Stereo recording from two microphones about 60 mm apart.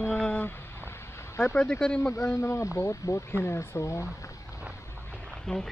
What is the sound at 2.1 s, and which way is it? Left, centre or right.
A man's voice, left.